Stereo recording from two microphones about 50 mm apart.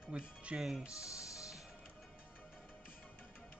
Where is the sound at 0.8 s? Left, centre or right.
Left.